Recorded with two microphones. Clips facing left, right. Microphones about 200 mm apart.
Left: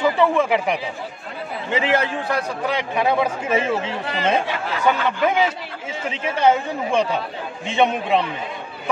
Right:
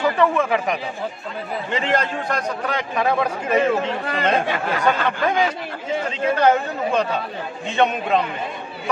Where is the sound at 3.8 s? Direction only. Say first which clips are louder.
Right 2 dB; 55° right (ahead or behind).